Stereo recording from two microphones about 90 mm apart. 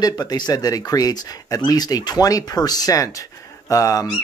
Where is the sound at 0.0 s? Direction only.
45° left (ahead or behind).